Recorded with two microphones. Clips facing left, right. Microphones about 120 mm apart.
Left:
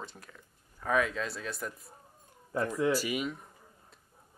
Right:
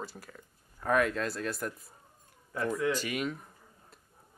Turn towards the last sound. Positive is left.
turn(degrees=5)  # may be behind; listen again after turning